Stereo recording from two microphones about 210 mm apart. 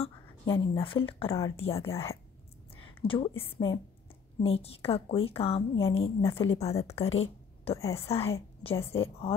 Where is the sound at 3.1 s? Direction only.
25° left (ahead or behind).